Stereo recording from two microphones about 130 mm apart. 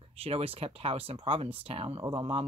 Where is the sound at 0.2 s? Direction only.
45° right (ahead or behind).